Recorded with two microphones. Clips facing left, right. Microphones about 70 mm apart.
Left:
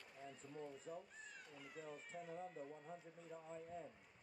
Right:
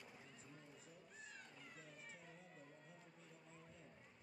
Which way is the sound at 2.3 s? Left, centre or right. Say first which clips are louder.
Left 11 dB; left.